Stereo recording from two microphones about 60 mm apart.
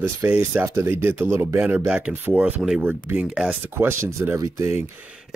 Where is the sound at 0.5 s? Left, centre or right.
Right.